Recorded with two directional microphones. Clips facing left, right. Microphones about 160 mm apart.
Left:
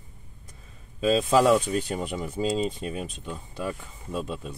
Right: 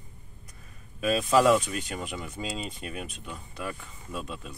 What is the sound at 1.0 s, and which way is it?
Speech, 25° left (ahead or behind).